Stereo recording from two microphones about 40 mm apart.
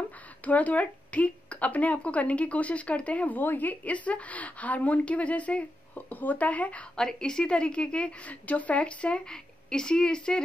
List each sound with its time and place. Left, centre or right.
0.4 s a woman's voice: left
3.3 s a woman's voice: left
5.9 s a woman's voice: left
7.0 s a woman's voice: centre